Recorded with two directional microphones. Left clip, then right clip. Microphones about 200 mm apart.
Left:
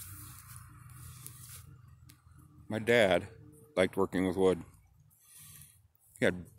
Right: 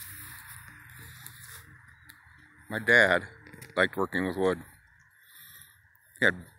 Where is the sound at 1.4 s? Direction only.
Centre (ahead or behind).